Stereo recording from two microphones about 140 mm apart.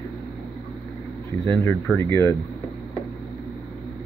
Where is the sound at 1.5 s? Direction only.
15° left (ahead or behind).